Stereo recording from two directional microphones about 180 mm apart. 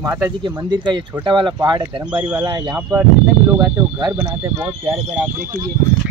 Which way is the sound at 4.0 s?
20° right (ahead or behind).